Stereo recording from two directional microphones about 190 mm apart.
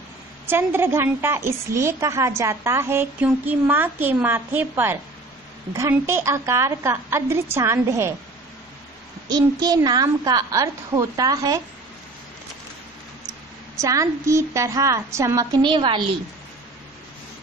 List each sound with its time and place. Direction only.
0.5 s a woman's voice: 10° right (ahead or behind)
9.3 s a woman's voice: 20° right (ahead or behind)
13.7 s a woman's voice: 15° right (ahead or behind)